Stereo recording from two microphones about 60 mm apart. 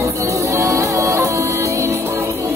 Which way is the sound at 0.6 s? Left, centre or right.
Right.